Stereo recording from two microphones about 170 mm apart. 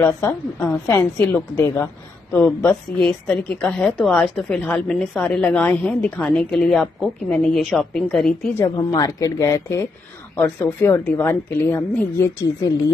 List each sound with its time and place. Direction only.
0.0 s a woman's voice: 15° left (ahead or behind)
8.5 s speech: 25° left (ahead or behind)